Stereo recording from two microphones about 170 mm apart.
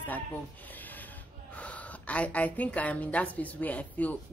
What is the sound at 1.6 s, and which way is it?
A woman's voice, 10° left (ahead or behind).